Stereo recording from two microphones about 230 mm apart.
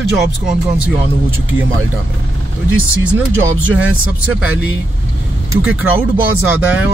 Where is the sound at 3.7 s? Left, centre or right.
Centre.